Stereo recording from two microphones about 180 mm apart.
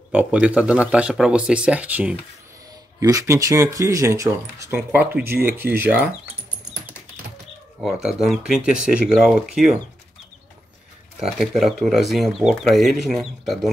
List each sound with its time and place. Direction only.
0.1 s speech: 5° right (ahead or behind)
7.8 s speech: 5° right (ahead or behind)
11.1 s speech: centre (ahead or behind)